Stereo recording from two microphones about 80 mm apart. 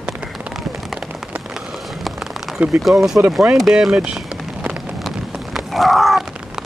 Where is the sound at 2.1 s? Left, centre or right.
Centre.